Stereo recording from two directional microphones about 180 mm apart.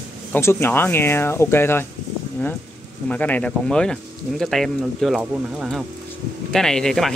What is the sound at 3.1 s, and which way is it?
Speech, 10° left (ahead or behind).